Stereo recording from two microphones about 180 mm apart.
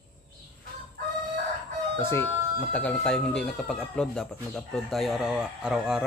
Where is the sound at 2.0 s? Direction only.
10° left (ahead or behind).